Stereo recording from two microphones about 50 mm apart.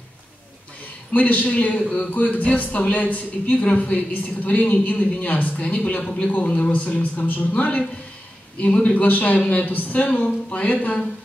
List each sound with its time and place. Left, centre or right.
1.1 s a man's voice: left